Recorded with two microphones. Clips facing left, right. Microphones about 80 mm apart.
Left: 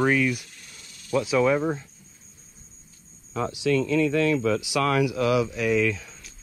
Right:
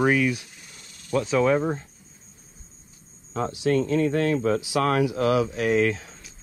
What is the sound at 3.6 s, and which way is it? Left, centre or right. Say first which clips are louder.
Speech: even; right.